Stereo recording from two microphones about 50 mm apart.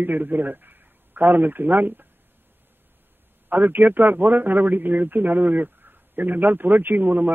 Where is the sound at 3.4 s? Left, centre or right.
Right.